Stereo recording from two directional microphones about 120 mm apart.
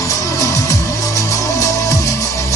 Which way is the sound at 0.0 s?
25° left (ahead or behind).